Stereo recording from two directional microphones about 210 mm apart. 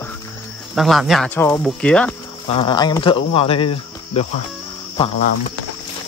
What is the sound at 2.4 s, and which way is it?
Speech, 25° left (ahead or behind).